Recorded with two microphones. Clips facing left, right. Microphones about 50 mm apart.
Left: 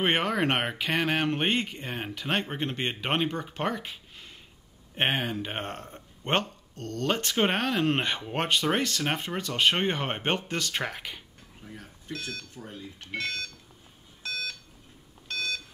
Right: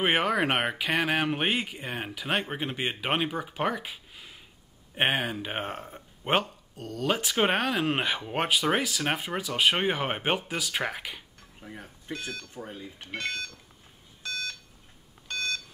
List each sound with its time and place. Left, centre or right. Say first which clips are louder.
0.0 s speech: right 1 dB; centre
11.6 s speech: right 2 dB; right
12.1 s speech: right 1 dB; centre
13.2 s speech: even; centre
14.2 s alarm clock: even; centre